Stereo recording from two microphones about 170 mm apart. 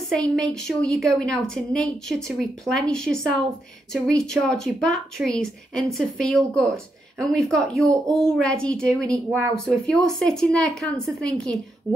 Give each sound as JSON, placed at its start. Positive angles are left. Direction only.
{"t": 0.1, "sound": "speech", "side_deg": 5}